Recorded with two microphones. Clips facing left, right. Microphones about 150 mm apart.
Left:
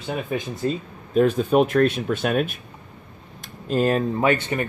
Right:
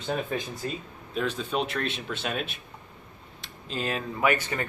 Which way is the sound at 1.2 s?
50° left (ahead or behind).